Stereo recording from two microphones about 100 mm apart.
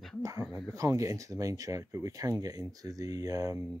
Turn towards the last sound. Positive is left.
turn(degrees=-35)  # may be behind; listen again after turning